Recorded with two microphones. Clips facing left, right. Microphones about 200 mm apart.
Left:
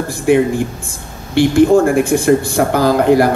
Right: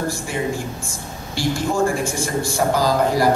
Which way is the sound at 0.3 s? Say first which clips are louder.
Left 12 dB; 60° left (ahead or behind).